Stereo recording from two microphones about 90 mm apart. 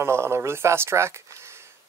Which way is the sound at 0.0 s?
30° right (ahead or behind).